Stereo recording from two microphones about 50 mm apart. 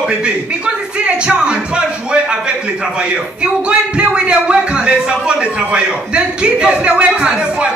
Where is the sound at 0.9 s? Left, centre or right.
Centre.